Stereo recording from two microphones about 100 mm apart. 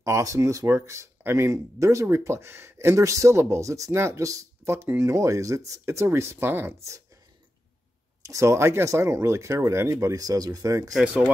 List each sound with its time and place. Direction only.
0.0 s speech: 30° right (ahead or behind)
8.2 s speech: 30° right (ahead or behind)
10.9 s speech: 5° right (ahead or behind)